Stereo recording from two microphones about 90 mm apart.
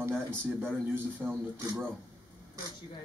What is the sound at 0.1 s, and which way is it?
Speech, 10° left (ahead or behind).